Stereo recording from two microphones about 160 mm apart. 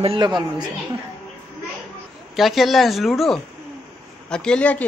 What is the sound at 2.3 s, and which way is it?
A woman's voice, centre (ahead or behind).